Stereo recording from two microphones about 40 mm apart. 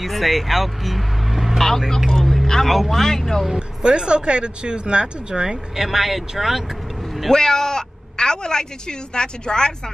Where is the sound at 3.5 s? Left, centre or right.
Right.